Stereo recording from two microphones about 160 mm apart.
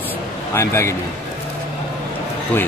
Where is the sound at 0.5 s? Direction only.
15° left (ahead or behind).